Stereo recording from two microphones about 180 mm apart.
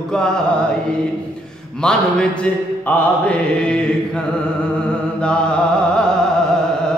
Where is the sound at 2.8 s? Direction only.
10° left (ahead or behind).